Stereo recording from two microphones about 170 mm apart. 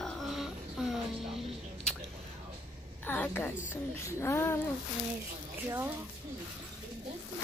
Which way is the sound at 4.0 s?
15° left (ahead or behind).